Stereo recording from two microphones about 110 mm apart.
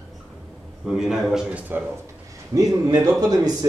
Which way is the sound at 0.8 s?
5° right (ahead or behind).